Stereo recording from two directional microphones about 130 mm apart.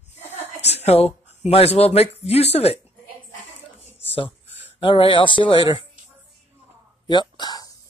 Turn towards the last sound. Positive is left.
turn(degrees=30)  # may be behind; listen again after turning